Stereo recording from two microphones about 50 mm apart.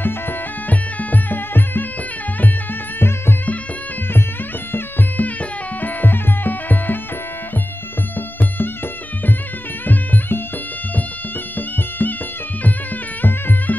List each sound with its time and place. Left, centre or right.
0.0 s music: left
4.7 s music: left
9.8 s music: left
11.5 s music: left
13.2 s music: left